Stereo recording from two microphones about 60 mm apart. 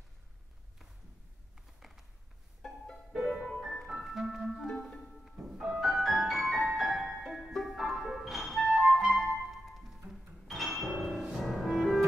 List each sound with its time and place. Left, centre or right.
1.5 s a sound: centre
3.1 s music: centre
4.6 s music: centre
8.6 s clarinet: centre
9.1 s music: centre